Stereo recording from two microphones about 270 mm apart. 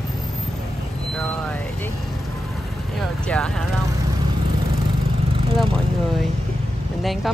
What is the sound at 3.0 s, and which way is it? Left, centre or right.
Speech, centre.